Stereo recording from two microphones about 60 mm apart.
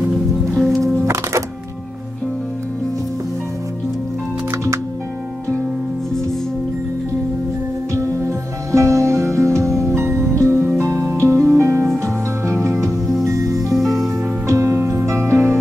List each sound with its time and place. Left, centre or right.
0.1 s music: centre
1.0 s music: right
7.9 s music: right
13.2 s music: right
13.7 s music: centre
14.1 s music: right